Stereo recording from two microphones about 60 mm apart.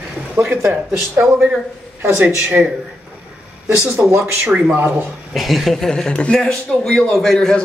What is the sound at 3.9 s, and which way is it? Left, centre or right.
Speech, right.